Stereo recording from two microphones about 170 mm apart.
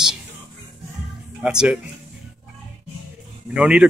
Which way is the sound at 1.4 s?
5° right (ahead or behind).